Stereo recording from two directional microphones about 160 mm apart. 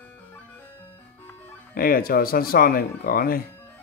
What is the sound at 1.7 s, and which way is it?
Speech, 65° left (ahead or behind).